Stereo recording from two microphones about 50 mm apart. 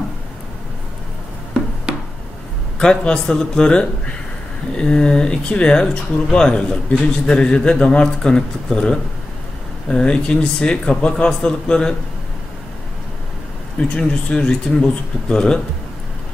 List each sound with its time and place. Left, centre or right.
2.8 s a man's voice: centre
13.7 s a man's voice: centre